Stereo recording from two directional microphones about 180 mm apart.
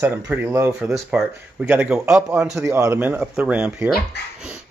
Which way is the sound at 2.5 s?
15° right (ahead or behind).